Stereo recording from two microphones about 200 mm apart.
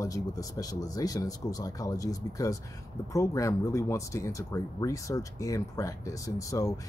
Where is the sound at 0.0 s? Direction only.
15° left (ahead or behind).